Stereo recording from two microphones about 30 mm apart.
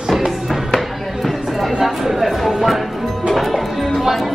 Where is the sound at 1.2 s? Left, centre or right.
Centre.